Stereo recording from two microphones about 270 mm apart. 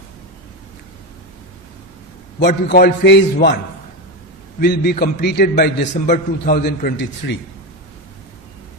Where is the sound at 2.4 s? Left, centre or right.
Left.